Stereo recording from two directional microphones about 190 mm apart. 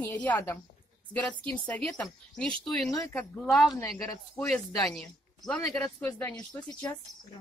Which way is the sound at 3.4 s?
Centre (ahead or behind).